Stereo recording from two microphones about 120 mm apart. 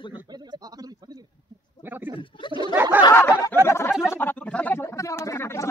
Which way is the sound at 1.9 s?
15° right (ahead or behind).